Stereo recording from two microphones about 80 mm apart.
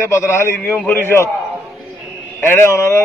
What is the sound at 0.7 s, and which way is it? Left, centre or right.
Speech, centre.